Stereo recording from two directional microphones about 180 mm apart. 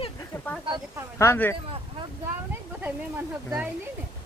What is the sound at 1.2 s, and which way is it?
Speech, 15° left (ahead or behind).